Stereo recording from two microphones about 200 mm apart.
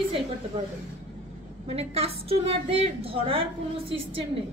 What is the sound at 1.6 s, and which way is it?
A woman's voice, 30° right (ahead or behind).